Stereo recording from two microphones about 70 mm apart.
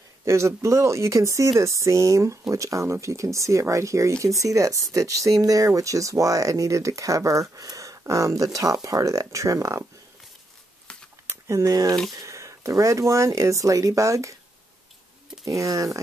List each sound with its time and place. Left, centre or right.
0.2 s speech: right
10.9 s a sound: centre
11.2 s speech: right
15.4 s speech: right